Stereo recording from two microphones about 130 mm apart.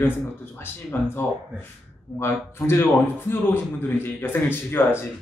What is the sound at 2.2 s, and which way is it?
A man's voice, 20° left (ahead or behind).